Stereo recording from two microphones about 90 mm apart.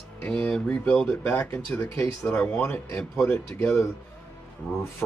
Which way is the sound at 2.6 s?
25° left (ahead or behind).